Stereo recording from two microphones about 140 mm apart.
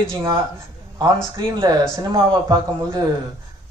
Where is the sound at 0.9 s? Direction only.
30° right (ahead or behind).